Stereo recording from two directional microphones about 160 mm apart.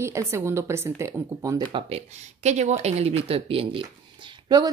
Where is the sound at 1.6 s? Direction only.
35° right (ahead or behind).